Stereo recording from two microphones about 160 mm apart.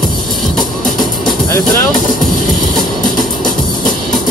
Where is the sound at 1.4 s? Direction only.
25° left (ahead or behind).